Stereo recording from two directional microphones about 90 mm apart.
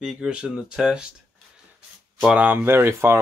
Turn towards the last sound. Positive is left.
turn(degrees=-30)  # may be behind; listen again after turning